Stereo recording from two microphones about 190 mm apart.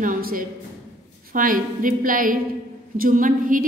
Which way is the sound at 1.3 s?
45° right (ahead or behind).